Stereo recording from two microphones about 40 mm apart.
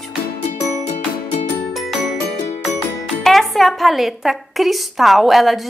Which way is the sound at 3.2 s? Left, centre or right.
Centre.